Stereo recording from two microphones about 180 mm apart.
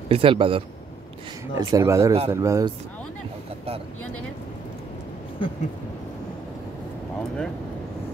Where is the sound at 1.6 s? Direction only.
20° right (ahead or behind).